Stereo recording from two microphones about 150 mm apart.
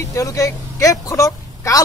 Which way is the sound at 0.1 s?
20° left (ahead or behind).